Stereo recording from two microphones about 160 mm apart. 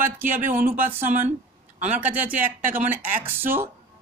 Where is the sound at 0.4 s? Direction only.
55° right (ahead or behind).